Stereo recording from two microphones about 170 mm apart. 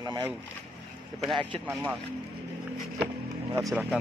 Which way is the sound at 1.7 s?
15° right (ahead or behind).